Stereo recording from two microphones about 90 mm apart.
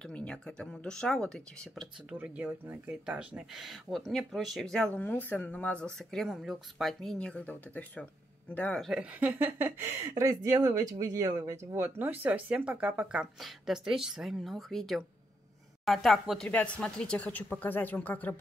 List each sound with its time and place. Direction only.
0.0 s speech: 10° left (ahead or behind)
2.0 s speech: 15° right (ahead or behind)
2.9 s speech: 10° right (ahead or behind)
3.6 s speech: centre (ahead or behind)
4.9 s speech: 20° left (ahead or behind)
5.9 s speech: centre (ahead or behind); by 8.8 s 15° left (ahead or behind)
9.2 s speech: 20° right (ahead or behind); by 16.4 s 5° left (ahead or behind)
16.4 s speech: 15° left (ahead or behind)